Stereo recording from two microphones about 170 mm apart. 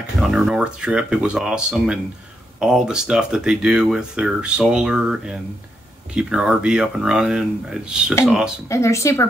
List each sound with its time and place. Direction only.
0.0 s speech: 5° right (ahead or behind)
8.6 s speech: 15° left (ahead or behind)